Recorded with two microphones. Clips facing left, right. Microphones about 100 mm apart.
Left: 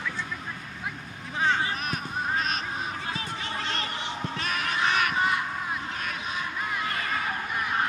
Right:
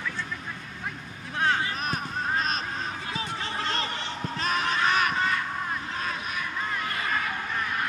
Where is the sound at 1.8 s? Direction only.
35° right (ahead or behind).